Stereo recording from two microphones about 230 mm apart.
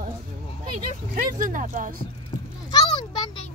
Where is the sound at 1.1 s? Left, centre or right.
Right.